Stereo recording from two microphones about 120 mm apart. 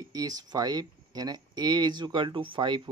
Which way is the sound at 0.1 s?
30° right (ahead or behind).